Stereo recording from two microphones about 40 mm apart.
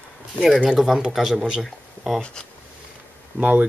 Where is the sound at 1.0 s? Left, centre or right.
Centre.